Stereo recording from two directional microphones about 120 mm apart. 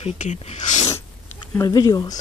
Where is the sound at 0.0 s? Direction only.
70° left (ahead or behind).